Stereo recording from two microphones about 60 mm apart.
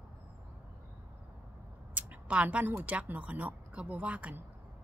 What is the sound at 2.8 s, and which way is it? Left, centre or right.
Speech, right.